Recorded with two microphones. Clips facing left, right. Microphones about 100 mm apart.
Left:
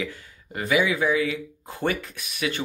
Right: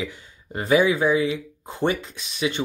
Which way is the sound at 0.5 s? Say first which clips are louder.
Right 4 dB; 35° right (ahead or behind).